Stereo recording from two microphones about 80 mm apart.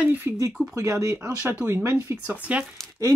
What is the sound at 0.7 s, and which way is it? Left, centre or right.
Speech, right.